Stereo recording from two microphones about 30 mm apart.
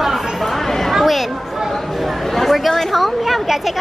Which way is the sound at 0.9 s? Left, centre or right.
Centre.